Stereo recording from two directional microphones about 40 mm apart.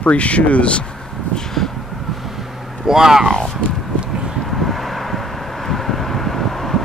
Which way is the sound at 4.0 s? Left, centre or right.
Right.